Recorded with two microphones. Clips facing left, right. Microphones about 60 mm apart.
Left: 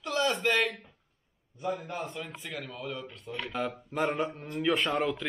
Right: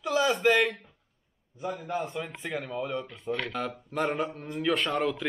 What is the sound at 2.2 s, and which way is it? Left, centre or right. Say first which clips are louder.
Speech: right 5 dB; centre.